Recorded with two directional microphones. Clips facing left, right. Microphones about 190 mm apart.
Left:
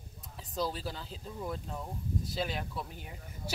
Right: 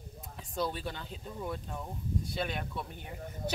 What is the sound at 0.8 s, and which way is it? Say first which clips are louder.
A woman's voice: even; centre (ahead or behind).